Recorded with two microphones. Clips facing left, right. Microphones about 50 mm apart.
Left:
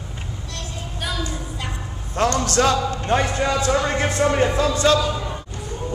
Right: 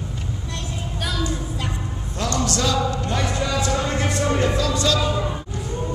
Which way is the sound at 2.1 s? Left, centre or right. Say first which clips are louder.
Left 5 dB; left.